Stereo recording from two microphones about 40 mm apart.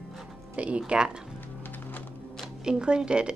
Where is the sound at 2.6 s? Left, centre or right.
Right.